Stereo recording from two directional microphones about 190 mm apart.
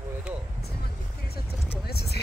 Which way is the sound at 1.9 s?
55° left (ahead or behind).